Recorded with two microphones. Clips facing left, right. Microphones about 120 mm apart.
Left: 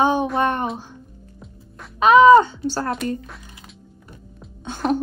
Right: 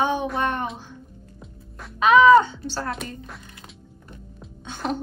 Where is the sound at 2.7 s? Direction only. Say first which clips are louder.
Left 5 dB; 45° left (ahead or behind).